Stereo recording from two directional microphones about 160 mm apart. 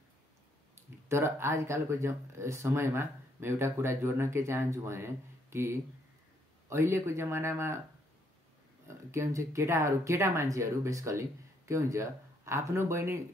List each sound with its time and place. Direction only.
0.7 s speech: 15° right (ahead or behind)
8.8 s speech: 15° right (ahead or behind)